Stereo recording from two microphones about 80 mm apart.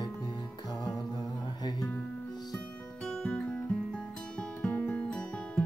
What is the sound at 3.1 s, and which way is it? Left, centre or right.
Guitar, centre.